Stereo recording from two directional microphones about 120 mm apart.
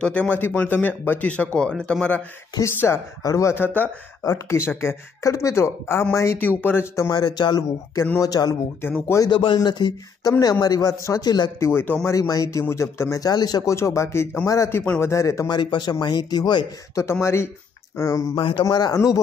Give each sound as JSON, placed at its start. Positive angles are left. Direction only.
{"t": 0.0, "sound": "speech", "side_deg": 10}
{"t": 3.2, "sound": "speech", "side_deg": 25}
{"t": 7.1, "sound": "a man's voice", "side_deg": 35}
{"t": 8.8, "sound": "speech", "side_deg": 20}
{"t": 9.2, "sound": "a man's voice", "side_deg": 40}
{"t": 11.6, "sound": "speech", "side_deg": 15}
{"t": 12.1, "sound": "a man's voice", "side_deg": 30}
{"t": 16.9, "sound": "speech", "side_deg": 25}
{"t": 18.3, "sound": "a man's voice", "side_deg": 50}
{"t": 18.6, "sound": "a man's voice", "side_deg": 35}